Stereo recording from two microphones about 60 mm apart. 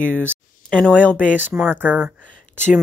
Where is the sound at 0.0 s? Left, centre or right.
Left.